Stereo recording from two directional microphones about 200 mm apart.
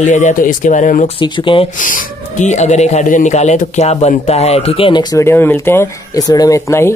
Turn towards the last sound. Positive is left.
turn(degrees=15)  # may be behind; listen again after turning